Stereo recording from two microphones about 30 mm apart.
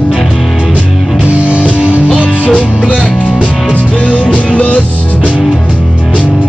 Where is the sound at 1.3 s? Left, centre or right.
Right.